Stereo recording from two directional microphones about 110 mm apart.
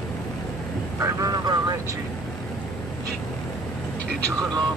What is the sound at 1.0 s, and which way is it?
Speech, 30° right (ahead or behind).